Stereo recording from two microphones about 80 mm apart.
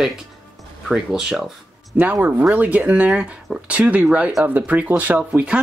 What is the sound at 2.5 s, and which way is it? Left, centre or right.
Speech, centre.